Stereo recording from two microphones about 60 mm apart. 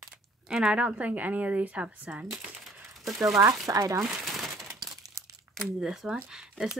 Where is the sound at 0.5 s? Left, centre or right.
Centre.